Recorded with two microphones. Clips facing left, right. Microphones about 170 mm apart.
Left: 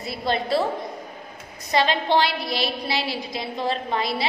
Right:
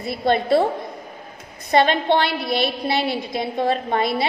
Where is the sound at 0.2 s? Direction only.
55° right (ahead or behind).